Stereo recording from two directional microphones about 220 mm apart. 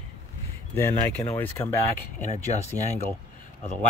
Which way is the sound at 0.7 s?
10° left (ahead or behind).